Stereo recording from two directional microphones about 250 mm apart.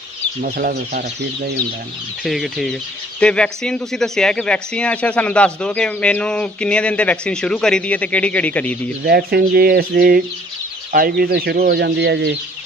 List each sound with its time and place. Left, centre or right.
0.4 s speech: right
2.2 s speech: centre
9.0 s speech: right